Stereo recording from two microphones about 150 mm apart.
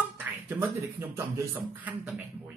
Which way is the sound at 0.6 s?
15° right (ahead or behind).